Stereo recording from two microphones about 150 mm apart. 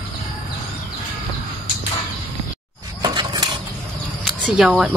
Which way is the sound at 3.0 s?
30° right (ahead or behind).